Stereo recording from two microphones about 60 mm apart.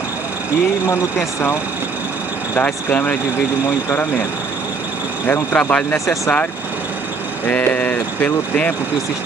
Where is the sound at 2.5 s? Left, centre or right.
Left.